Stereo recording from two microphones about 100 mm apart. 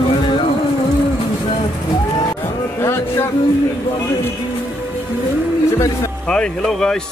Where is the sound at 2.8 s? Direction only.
25° left (ahead or behind).